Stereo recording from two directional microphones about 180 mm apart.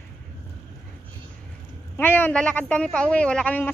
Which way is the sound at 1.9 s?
10° left (ahead or behind).